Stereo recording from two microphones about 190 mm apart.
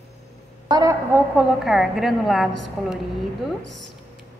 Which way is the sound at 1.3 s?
5° right (ahead or behind).